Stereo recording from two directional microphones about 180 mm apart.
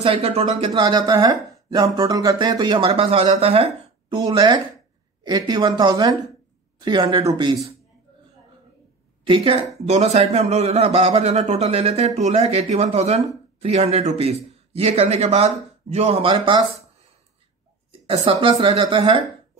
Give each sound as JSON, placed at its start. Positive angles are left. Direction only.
{"t": 0.0, "sound": "speech", "side_deg": -30}
{"t": 9.2, "sound": "a man's voice", "side_deg": -30}
{"t": 18.1, "sound": "speech", "side_deg": -30}